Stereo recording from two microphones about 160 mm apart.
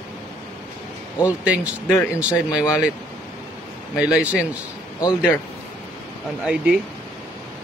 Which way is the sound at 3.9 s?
5° right (ahead or behind).